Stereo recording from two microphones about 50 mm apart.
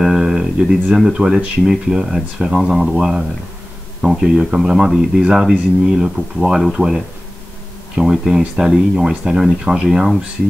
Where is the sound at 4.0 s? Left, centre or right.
Centre.